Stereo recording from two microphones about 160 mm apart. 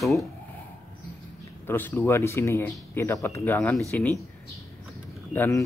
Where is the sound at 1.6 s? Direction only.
15° left (ahead or behind).